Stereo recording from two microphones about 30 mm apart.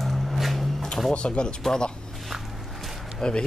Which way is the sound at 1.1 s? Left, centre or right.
Left.